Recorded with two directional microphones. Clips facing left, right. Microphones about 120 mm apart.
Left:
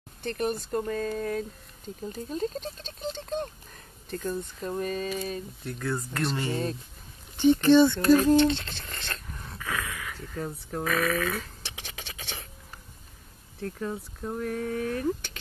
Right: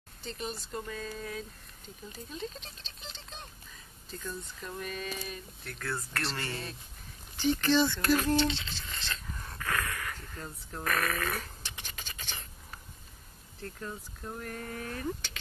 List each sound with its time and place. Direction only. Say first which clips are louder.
0.2 s speech: left 10 dB; 60° left (ahead or behind); by 5.7 s 30° left (ahead or behind)
5.7 s speech: left 6 dB; 15° left (ahead or behind)
6.5 s speech: left 10 dB; 40° left (ahead or behind)
7.9 s a sound: left 8 dB; 25° left (ahead or behind)
8.4 s speech: left 7 dB; 55° left (ahead or behind)
9.4 s dog: even; 10° left (ahead or behind)
10.3 s speech: left 9 dB; 80° left
10.8 s speech: left 5 dB; centre (ahead or behind)
11.1 s a sound: left 5 dB; 5° right (ahead or behind)
11.6 s whispering: left 3 dB; 70° left (ahead or behind)
13.6 s speech: left 8 dB; 65° left (ahead or behind)